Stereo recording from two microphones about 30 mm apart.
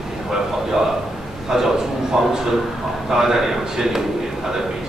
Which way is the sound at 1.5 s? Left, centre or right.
Centre.